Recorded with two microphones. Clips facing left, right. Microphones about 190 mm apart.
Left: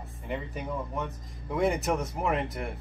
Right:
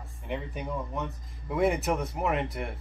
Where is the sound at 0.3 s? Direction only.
Centre (ahead or behind).